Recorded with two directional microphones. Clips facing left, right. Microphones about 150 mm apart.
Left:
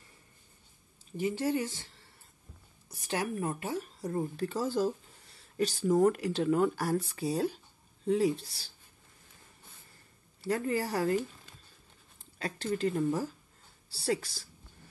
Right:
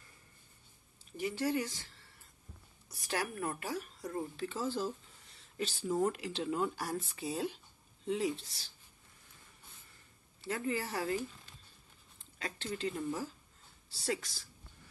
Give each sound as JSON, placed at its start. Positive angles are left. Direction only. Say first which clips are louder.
{"t": 1.1, "sound": "speech", "louder": "left 4 dB", "side_deg": 30}
{"t": 3.1, "sound": "speech", "louder": "left 4 dB", "side_deg": 20}
{"t": 10.4, "sound": "speech", "louder": "left 5 dB", "side_deg": 40}
{"t": 12.4, "sound": "speech", "louder": "left 7 dB", "side_deg": 40}